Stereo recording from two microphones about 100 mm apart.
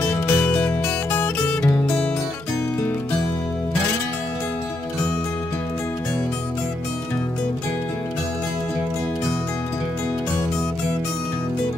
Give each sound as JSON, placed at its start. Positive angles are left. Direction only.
{"t": 0.0, "sound": "music", "side_deg": 20}